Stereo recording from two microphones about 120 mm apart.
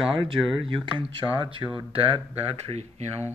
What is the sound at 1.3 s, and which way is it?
Speech, 45° right (ahead or behind).